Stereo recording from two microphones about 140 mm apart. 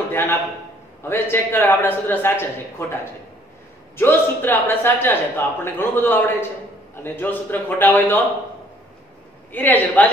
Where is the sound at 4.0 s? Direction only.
15° left (ahead or behind).